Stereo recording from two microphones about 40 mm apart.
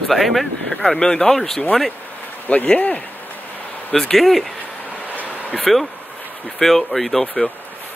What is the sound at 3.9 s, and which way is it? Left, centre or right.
Speech, centre.